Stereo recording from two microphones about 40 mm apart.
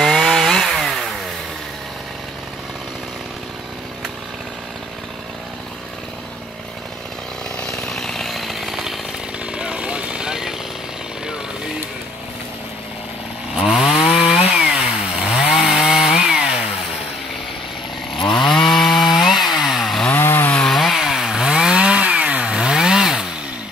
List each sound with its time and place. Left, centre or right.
0.0 s chainsaw: centre
7.9 s chainsaw: centre
9.5 s vehicle: right
13.6 s chainsaw: right
18.1 s chainsaw: centre
20.2 s chainsaw: left
20.7 s chainsaw: centre
21.0 s chainsaw: centre; by 22.2 s right
22.2 s chainsaw: right
22.5 s chainsaw: centre